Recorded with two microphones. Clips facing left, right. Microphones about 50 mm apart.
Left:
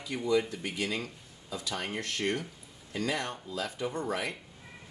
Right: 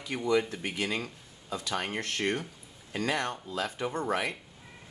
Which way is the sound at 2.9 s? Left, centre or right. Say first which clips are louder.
Right 2 dB; right.